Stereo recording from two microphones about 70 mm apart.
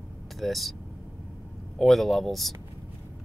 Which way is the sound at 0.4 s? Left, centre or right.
Centre.